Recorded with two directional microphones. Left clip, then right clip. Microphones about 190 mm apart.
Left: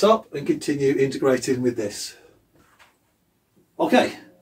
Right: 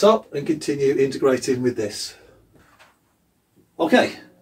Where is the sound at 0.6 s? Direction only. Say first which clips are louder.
Right 2 dB; 30° left (ahead or behind).